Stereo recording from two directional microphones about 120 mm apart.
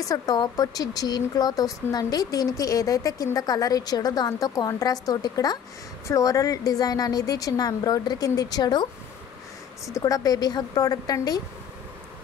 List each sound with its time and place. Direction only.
0.1 s speech: 30° left (ahead or behind)
9.9 s speech: 30° left (ahead or behind)